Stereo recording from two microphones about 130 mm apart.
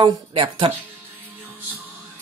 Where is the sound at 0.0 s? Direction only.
40° right (ahead or behind).